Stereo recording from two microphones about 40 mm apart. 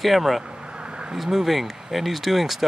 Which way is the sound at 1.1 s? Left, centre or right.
Centre.